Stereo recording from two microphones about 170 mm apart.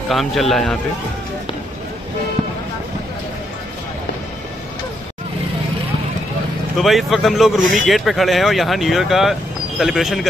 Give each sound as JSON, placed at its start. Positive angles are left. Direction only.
{"t": 0.1, "sound": "speech", "side_deg": 0}
{"t": 6.8, "sound": "speech", "side_deg": 0}